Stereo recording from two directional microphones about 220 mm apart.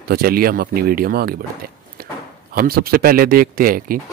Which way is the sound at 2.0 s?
40° right (ahead or behind).